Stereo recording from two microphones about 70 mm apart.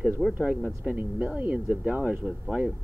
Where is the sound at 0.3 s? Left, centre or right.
Right.